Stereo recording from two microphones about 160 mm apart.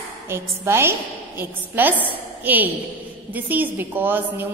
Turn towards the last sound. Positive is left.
turn(degrees=-15)  # may be behind; listen again after turning